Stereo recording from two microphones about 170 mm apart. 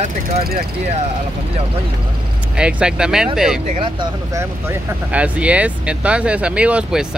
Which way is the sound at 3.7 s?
30° right (ahead or behind).